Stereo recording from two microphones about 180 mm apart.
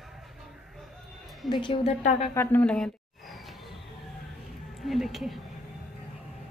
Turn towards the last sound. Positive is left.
turn(degrees=0)  # may be behind; listen again after turning